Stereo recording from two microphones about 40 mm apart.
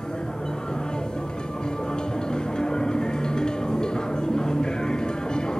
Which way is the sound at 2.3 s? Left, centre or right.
Centre.